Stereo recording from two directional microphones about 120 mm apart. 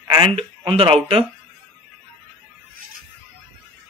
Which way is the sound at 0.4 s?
50° right (ahead or behind).